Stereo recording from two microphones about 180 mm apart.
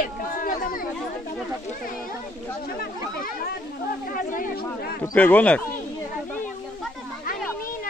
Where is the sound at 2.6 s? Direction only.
55° left (ahead or behind).